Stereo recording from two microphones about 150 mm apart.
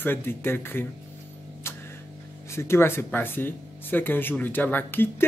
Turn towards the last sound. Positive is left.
turn(degrees=15)  # may be behind; listen again after turning